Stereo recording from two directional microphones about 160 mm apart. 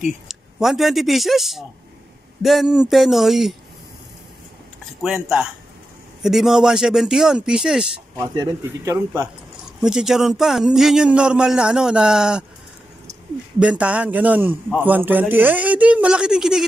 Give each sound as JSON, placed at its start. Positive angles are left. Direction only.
{"t": 0.0, "sound": "speech", "side_deg": 0}
{"t": 5.0, "sound": "speech", "side_deg": -5}
{"t": 8.2, "sound": "a man's voice", "side_deg": -20}
{"t": 9.8, "sound": "speech", "side_deg": -5}
{"t": 13.6, "sound": "a man's voice", "side_deg": -5}